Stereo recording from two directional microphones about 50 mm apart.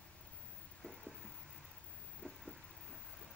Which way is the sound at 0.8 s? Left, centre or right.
Centre.